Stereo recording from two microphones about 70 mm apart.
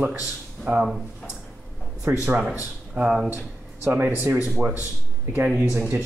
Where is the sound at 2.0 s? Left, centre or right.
Right.